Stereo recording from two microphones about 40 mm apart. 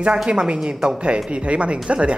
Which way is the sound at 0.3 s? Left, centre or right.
Right.